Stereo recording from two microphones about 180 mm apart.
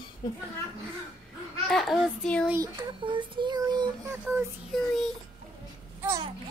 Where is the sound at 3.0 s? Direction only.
25° right (ahead or behind).